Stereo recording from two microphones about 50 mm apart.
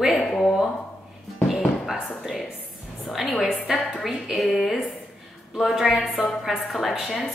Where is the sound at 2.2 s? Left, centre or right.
Centre.